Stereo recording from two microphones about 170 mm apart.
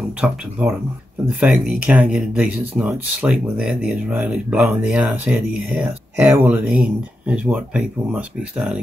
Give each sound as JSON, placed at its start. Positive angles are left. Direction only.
{"t": 0.2, "sound": "speech", "side_deg": -5}